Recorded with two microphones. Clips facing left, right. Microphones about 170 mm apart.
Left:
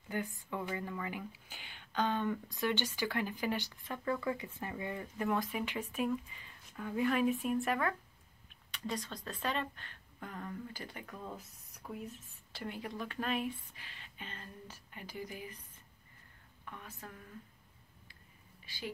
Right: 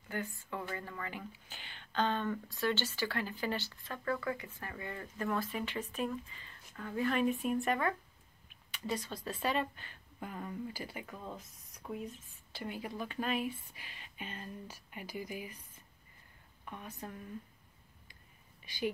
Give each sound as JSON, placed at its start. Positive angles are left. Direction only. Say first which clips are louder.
{"t": 0.1, "sound": "speech", "louder": "left 1 dB", "side_deg": 15}
{"t": 13.8, "sound": "speech", "louder": "right 3 dB", "side_deg": -15}
{"t": 16.6, "sound": "speech", "louder": "right 4 dB", "side_deg": -20}
{"t": 18.7, "sound": "speech", "louder": "right 1 dB", "side_deg": -15}